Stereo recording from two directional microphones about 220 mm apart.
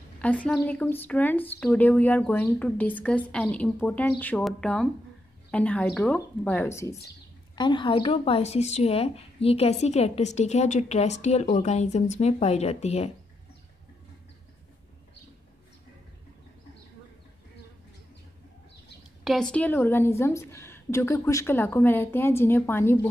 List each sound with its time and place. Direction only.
0.2 s a woman's voice: 5° left (ahead or behind); by 13.1 s 30° left (ahead or behind)
19.2 s a woman's voice: centre (ahead or behind)